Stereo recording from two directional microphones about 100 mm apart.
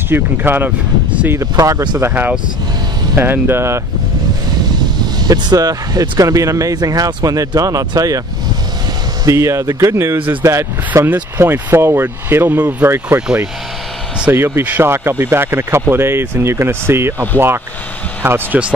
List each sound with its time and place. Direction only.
0.1 s speech: 20° right (ahead or behind)
1.3 s speech: 35° right (ahead or behind)
2.0 s speech: 20° right (ahead or behind)
5.2 s speech: 40° right (ahead or behind)
9.2 s speech: 30° right (ahead or behind)
14.3 s speech: 25° right (ahead or behind)
18.2 s speech: 20° right (ahead or behind)